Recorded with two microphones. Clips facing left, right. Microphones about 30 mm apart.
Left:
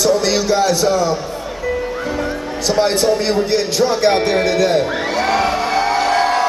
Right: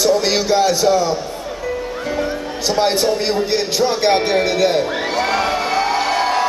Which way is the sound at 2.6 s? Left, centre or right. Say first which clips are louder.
Left 1 dB; centre.